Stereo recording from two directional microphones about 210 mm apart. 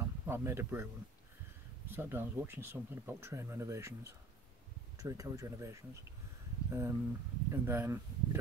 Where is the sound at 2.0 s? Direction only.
10° right (ahead or behind).